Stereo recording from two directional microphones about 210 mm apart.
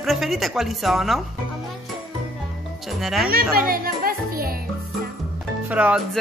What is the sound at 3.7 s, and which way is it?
Music, 45° right (ahead or behind).